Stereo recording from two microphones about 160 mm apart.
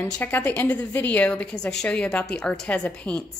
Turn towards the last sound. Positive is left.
turn(degrees=5)  # may be behind; listen again after turning